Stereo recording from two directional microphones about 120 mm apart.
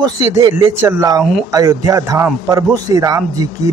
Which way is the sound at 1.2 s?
Centre (ahead or behind).